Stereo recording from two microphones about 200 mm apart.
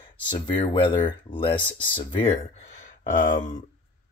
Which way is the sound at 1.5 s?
10° left (ahead or behind).